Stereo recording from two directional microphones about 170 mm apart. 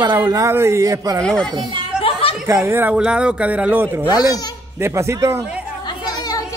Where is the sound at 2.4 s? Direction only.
15° right (ahead or behind).